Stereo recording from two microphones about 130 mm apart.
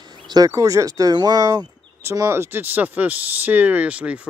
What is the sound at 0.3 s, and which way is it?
Speech, 25° right (ahead or behind).